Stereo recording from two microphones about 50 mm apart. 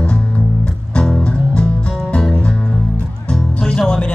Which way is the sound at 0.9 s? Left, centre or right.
Centre.